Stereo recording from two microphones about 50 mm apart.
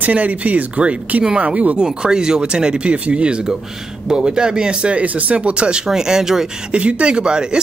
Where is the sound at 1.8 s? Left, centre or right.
Centre.